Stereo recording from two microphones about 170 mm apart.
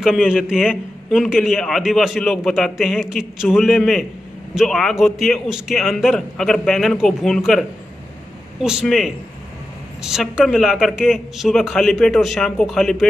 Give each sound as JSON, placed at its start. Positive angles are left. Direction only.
{"t": 0.0, "sound": "a man's voice", "side_deg": 0}
{"t": 8.6, "sound": "a man's voice", "side_deg": -5}